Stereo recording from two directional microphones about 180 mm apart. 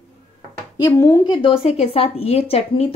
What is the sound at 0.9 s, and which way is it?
Speech, 15° left (ahead or behind).